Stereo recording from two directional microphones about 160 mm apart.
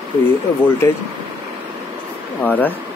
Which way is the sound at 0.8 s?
15° left (ahead or behind).